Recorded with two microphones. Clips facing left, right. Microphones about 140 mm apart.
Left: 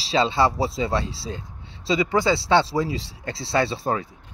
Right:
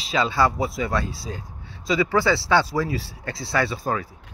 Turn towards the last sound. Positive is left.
turn(degrees=30)  # may be behind; listen again after turning